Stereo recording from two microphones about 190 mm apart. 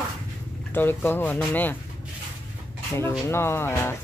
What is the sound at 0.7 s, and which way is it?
Speech, 10° left (ahead or behind).